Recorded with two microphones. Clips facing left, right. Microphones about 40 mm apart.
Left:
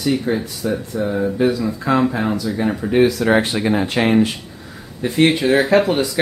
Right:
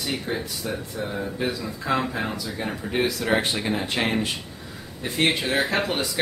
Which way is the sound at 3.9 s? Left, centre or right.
Centre.